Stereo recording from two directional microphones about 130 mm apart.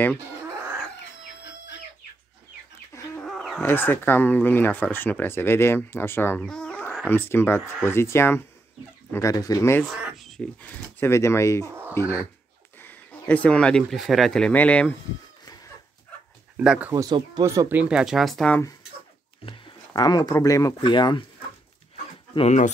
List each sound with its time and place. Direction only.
3.2 s dog: 5° left (ahead or behind)
3.6 s speech: 15° left (ahead or behind)
6.4 s a sound: 5° left (ahead or behind)
7.1 s speech: 15° left (ahead or behind)
9.9 s a sound: 5° right (ahead or behind)
10.6 s speech: 20° left (ahead or behind)
16.5 s speech: 10° right (ahead or behind)
16.9 s speech: 30° right (ahead or behind); by 18.6 s 5° left (ahead or behind)
19.4 s speech: 40° left (ahead or behind)